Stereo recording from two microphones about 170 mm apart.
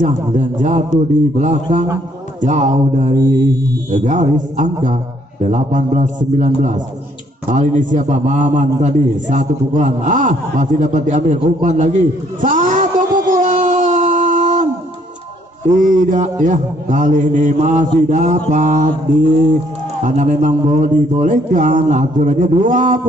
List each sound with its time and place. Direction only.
0.0 s a man's voice: 50° right (ahead or behind)
13.3 s a sound: 50° right (ahead or behind)
15.7 s a man's voice: 50° right (ahead or behind)